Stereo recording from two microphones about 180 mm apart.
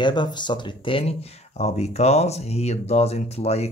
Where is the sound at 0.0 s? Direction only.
25° left (ahead or behind).